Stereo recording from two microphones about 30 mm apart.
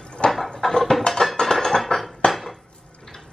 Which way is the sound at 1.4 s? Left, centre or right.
Centre.